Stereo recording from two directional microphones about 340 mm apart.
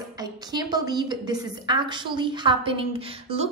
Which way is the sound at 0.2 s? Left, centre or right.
Centre.